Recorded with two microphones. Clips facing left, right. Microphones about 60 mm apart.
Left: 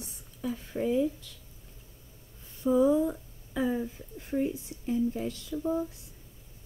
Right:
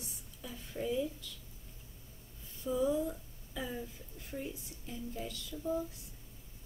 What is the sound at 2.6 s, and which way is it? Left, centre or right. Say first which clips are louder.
Speech: left 9 dB; left.